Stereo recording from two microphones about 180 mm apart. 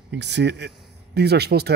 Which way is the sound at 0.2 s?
70° right (ahead or behind).